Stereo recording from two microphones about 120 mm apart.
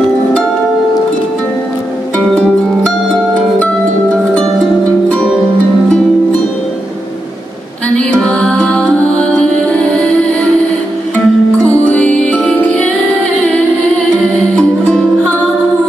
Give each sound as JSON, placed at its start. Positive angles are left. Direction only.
{"t": 7.9, "sound": "music", "side_deg": 10}
{"t": 11.1, "sound": "music", "side_deg": 10}